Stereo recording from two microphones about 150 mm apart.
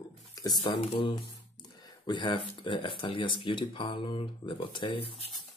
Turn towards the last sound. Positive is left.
turn(degrees=35)  # may be behind; listen again after turning